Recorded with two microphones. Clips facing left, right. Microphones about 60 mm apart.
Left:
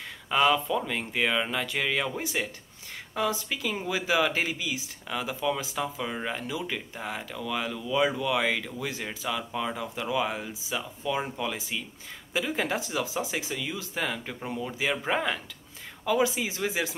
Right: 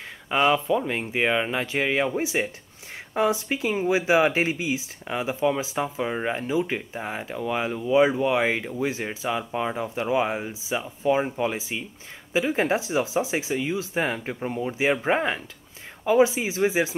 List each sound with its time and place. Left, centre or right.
0.3 s speech: centre